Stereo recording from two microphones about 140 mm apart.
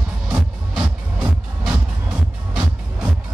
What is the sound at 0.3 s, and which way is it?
Music, 10° right (ahead or behind).